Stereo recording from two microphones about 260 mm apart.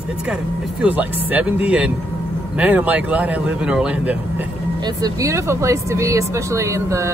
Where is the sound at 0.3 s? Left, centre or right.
Centre.